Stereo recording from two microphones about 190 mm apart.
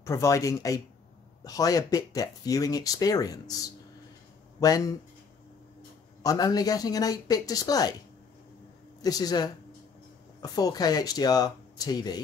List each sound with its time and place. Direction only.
0.0 s speech: 15° left (ahead or behind)
9.0 s speech: 20° left (ahead or behind)